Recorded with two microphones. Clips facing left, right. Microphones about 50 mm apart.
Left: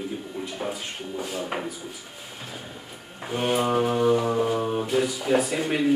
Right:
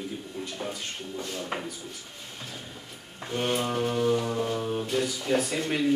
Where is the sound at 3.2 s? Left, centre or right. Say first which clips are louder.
Left 4 dB; centre.